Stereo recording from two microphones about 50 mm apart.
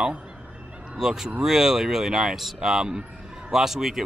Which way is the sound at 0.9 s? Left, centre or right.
Centre.